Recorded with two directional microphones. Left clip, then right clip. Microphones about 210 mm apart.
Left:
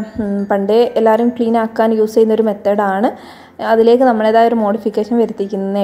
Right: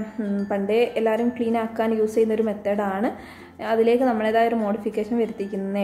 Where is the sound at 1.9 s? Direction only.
25° left (ahead or behind).